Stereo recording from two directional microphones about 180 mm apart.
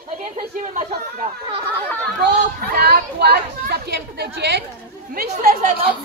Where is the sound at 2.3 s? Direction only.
55° right (ahead or behind).